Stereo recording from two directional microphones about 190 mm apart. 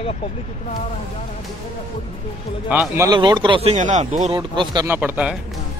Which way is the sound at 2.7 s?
10° right (ahead or behind).